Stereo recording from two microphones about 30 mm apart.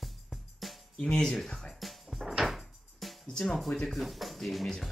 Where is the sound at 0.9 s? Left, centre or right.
Left.